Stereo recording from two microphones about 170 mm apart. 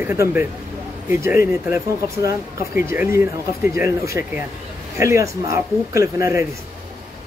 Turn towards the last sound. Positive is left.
turn(degrees=-15)  # may be behind; listen again after turning